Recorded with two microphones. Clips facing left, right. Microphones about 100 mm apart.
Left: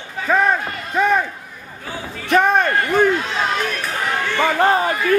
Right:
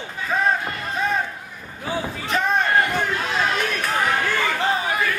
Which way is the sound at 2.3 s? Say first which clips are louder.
Left 5 dB; 55° left (ahead or behind).